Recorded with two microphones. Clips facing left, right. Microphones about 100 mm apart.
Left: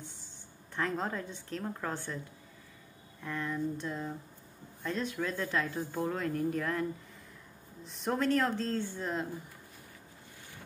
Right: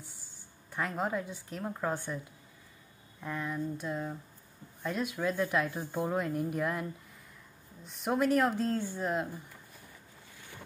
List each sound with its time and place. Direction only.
0.7 s speech: 10° right (ahead or behind)
3.2 s speech: 10° right (ahead or behind)
7.8 s speech: 5° right (ahead or behind)